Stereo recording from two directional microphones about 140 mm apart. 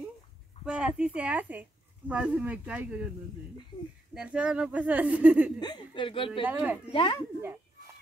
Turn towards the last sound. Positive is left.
turn(degrees=-15)  # may be behind; listen again after turning